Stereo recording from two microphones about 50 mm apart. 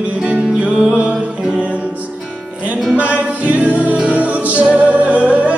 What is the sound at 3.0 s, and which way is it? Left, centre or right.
Music, right.